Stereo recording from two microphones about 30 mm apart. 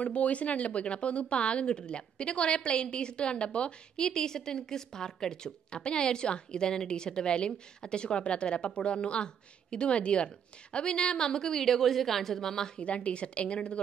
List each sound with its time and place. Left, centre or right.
0.0 s a woman's voice: left
4.0 s a woman's voice: left
9.9 s a woman's voice: left
10.2 s a woman's voice: left
12.7 s a woman's voice: left